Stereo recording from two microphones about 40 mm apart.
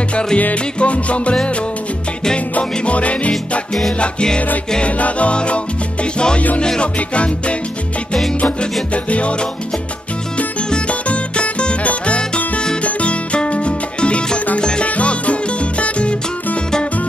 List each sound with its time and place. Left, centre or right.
0.1 s music: left
0.7 s music: left
4.0 s music: left
4.8 s music: left
8.9 s music: left
14.6 s music: left
14.9 s music: left